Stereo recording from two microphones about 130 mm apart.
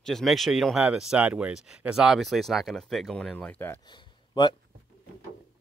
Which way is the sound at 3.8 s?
35° left (ahead or behind).